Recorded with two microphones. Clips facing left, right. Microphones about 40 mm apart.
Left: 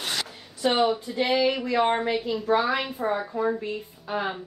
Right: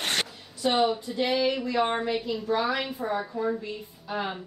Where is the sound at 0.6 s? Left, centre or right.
Left.